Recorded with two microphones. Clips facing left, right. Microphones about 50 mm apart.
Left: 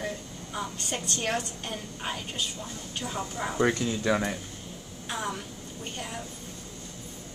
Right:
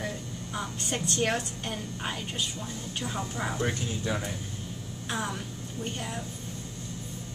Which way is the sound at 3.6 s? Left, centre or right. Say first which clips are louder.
Left 5 dB; left.